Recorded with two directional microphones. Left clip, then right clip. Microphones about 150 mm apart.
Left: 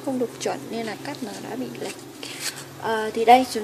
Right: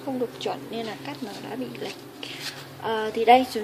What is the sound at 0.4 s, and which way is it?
Speech, 25° left (ahead or behind).